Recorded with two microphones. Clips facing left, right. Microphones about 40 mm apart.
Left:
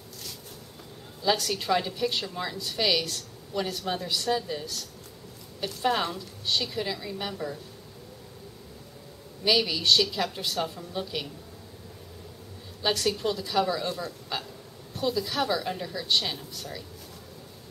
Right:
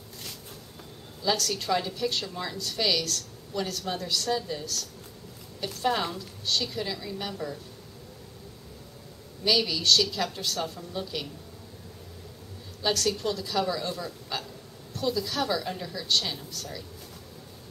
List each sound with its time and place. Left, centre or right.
1.2 s a woman's voice: centre
9.4 s a woman's voice: centre
12.8 s a woman's voice: centre